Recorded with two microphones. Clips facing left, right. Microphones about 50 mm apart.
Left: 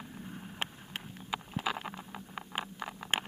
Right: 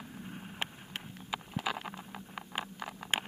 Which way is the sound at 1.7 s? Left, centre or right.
Centre.